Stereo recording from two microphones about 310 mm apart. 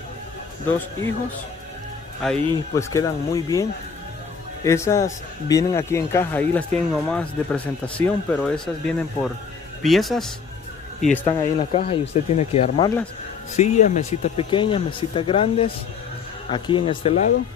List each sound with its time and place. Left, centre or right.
2.2 s a man's voice: centre
4.6 s a man's voice: centre